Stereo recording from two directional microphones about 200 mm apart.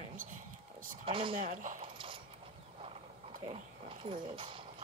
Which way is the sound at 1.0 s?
25° right (ahead or behind).